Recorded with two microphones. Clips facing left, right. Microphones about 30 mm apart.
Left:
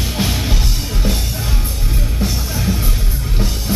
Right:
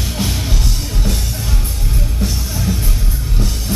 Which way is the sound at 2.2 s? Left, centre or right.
Centre.